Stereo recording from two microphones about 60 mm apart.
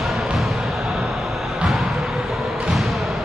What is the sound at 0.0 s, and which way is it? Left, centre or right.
Basketball bounce, centre.